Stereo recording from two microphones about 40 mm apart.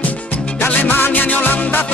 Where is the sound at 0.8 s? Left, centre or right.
Left.